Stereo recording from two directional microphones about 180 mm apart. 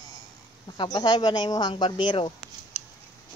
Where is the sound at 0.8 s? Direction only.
25° left (ahead or behind).